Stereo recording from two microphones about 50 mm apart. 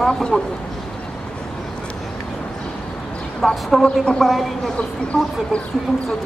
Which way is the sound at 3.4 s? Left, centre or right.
Centre.